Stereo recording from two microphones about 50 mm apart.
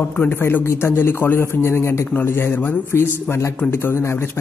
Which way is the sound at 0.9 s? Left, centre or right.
Left.